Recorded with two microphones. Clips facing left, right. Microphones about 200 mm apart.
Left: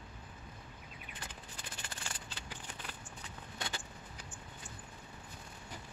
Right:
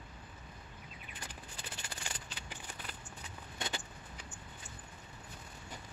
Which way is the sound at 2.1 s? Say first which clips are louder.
Right 2 dB; 15° right (ahead or behind).